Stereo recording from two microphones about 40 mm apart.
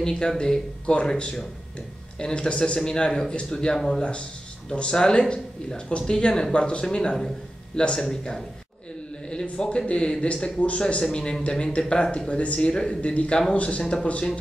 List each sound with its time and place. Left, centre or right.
0.0 s speech: centre
4.0 s speech: left
11.0 s speech: left
12.3 s speech: left